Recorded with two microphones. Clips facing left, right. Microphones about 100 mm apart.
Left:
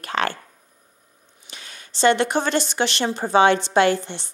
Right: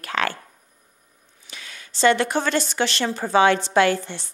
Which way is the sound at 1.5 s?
25° left (ahead or behind).